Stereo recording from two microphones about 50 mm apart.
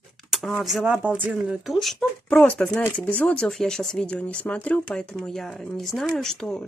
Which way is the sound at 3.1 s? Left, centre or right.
Left.